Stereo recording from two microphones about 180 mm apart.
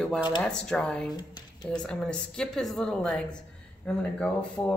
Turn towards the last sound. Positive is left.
turn(degrees=5)  # may be behind; listen again after turning